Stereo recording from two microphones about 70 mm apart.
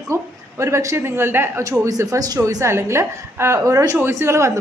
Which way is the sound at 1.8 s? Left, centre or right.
Right.